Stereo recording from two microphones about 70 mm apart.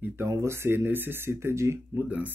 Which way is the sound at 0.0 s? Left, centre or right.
Right.